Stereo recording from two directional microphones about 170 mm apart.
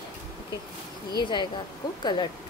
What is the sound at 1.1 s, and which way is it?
Speech, 25° left (ahead or behind).